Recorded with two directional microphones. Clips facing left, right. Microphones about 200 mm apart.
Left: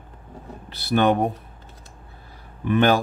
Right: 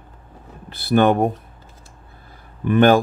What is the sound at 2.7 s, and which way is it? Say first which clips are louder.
Speech: right 4 dB; 50° right (ahead or behind).